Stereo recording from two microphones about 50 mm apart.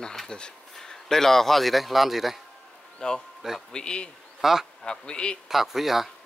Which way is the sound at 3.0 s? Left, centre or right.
Centre.